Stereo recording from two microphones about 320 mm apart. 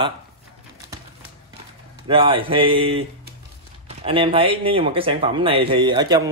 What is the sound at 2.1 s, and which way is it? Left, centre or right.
Speech, centre.